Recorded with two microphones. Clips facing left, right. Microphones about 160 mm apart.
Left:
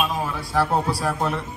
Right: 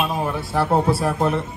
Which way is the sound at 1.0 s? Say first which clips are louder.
Right 4 dB; centre (ahead or behind).